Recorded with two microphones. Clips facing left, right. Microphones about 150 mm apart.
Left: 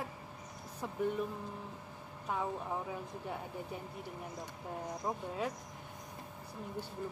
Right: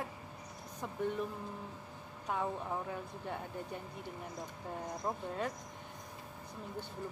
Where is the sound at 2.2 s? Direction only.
5° left (ahead or behind).